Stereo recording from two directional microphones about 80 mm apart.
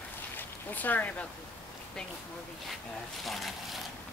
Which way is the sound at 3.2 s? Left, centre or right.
Centre.